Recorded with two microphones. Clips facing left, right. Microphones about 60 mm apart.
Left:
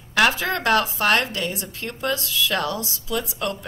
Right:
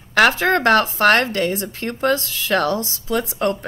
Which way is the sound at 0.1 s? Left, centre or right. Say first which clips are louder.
Right 5 dB; right.